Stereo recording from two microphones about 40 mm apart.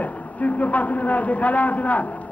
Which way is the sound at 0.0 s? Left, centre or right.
Left.